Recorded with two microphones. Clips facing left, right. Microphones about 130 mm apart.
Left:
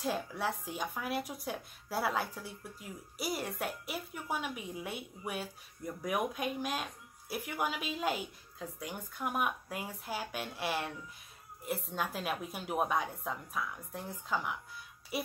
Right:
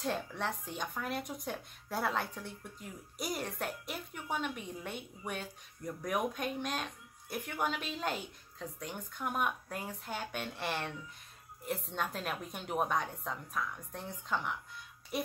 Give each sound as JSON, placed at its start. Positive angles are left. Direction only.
{"t": 0.0, "sound": "speech", "side_deg": 5}